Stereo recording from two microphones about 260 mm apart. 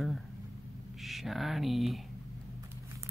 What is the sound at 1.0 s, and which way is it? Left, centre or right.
Speech, centre.